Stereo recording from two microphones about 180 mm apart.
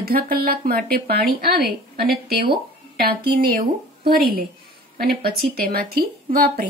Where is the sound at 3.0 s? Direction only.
55° right (ahead or behind).